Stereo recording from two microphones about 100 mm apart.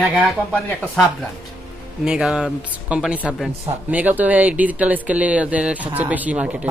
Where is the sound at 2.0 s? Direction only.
5° right (ahead or behind).